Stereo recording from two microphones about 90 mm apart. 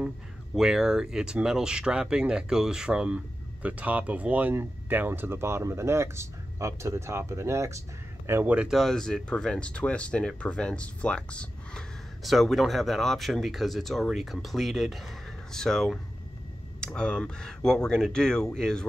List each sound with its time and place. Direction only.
0.6 s speech: 5° right (ahead or behind); by 7.8 s 35° right (ahead or behind)
8.5 s speech: 10° right (ahead or behind)
8.7 s speech: 5° left (ahead or behind)
12.2 s speech: centre (ahead or behind)